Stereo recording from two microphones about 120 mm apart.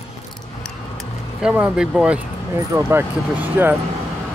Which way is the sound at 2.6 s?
25° right (ahead or behind).